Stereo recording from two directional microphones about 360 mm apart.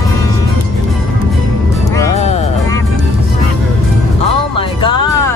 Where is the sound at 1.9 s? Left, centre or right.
Centre.